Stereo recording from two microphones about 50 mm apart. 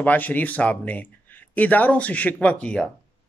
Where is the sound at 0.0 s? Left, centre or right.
Left.